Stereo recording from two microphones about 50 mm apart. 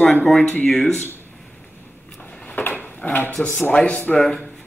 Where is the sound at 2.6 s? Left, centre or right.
Left.